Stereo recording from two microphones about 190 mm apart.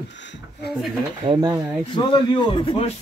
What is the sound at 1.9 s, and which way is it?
A man's voice, 25° left (ahead or behind).